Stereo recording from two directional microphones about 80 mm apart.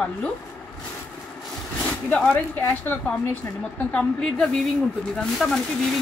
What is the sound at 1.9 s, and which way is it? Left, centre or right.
Speech, centre.